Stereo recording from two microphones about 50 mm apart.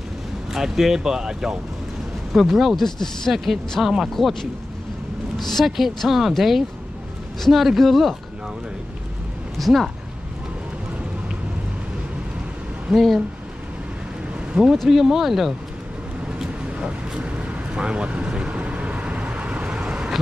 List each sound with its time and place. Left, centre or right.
0.5 s speech: centre
4.1 s speech: centre
5.7 s speech: centre
9.6 s speech: centre
12.9 s speech: centre
14.5 s speech: centre
16.3 s vehicle: centre
19.6 s vehicle: centre